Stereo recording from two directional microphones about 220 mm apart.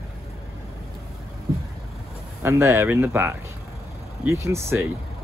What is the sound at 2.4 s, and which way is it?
Speech, 10° right (ahead or behind).